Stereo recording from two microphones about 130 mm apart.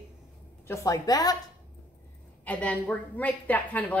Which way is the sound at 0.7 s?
25° left (ahead or behind).